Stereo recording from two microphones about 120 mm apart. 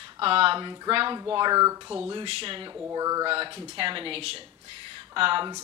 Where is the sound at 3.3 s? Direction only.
45° right (ahead or behind).